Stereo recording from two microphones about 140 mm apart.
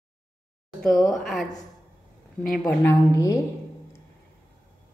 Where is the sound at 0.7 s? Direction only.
Centre (ahead or behind).